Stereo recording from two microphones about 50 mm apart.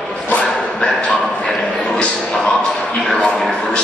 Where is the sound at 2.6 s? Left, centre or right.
Left.